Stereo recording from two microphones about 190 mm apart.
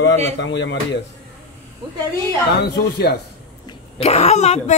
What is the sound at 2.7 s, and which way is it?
Speech, 60° left (ahead or behind).